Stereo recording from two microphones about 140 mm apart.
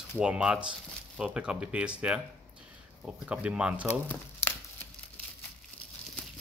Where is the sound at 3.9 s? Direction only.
15° left (ahead or behind).